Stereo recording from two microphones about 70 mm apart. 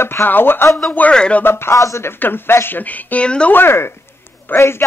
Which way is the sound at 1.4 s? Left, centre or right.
Left.